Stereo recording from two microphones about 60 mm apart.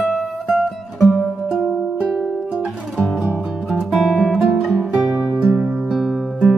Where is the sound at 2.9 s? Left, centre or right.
Centre.